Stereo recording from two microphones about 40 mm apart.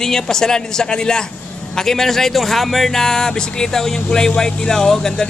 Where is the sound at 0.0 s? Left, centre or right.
Centre.